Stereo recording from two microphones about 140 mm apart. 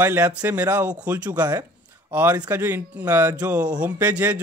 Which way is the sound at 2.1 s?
15° right (ahead or behind).